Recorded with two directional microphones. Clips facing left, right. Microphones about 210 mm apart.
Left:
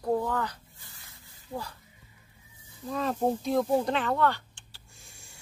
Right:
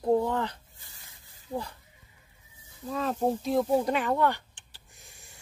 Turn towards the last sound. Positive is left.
turn(degrees=-20)  # may be behind; listen again after turning